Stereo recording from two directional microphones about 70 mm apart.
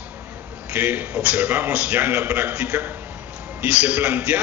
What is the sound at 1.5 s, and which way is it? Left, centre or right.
A man's voice, right.